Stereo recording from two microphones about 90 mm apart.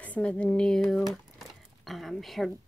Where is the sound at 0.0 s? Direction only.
15° left (ahead or behind).